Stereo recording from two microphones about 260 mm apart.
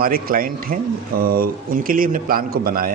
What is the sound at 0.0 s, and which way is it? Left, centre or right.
Speech, right.